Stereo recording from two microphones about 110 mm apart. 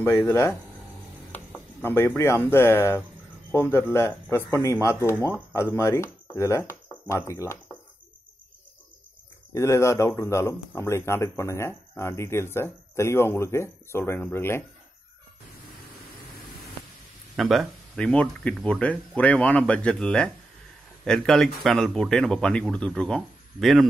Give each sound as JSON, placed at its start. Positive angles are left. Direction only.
{"t": 0.0, "sound": "speech", "side_deg": 20}
{"t": 9.5, "sound": "speech", "side_deg": 25}
{"t": 17.4, "sound": "speech", "side_deg": 0}
{"t": 18.0, "sound": "speech", "side_deg": 10}